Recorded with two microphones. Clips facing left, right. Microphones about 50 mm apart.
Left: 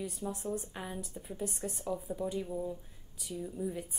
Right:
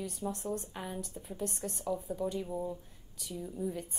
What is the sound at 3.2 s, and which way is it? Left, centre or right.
Speech, centre.